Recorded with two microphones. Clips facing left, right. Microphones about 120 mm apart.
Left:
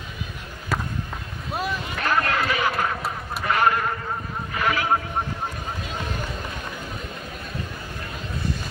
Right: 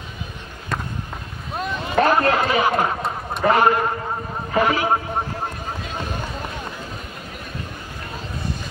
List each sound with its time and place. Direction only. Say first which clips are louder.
0.7 s run: even; 5° left (ahead or behind)
1.5 s boat: even; 5° left (ahead or behind)
2.0 s a sound: right 7 dB; 30° right (ahead or behind)
3.4 s a man's voice: right 5 dB; 30° right (ahead or behind)